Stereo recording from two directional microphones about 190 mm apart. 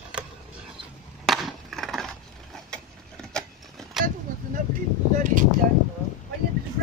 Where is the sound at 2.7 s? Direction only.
5° left (ahead or behind).